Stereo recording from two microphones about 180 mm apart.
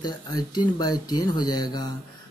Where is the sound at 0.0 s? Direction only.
20° left (ahead or behind).